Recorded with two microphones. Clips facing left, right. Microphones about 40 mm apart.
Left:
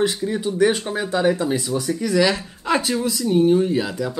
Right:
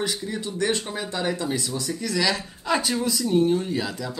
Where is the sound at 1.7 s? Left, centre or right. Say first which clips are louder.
Left 7 dB; left.